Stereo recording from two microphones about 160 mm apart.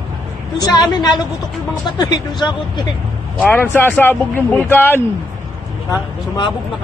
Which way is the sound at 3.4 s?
10° left (ahead or behind).